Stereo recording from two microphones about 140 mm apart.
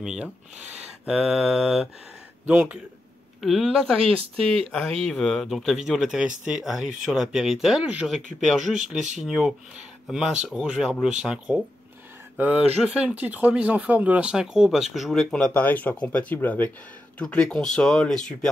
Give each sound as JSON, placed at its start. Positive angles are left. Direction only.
{"t": 0.0, "sound": "speech", "side_deg": -5}
{"t": 3.3, "sound": "speech", "side_deg": 0}
{"t": 4.0, "sound": "speech", "side_deg": -40}
{"t": 4.7, "sound": "speech", "side_deg": 0}